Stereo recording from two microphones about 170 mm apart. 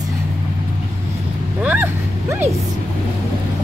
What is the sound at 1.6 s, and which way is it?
Dog, 10° right (ahead or behind).